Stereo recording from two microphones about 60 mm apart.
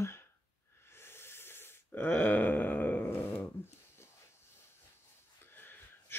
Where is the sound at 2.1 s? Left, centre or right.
Left.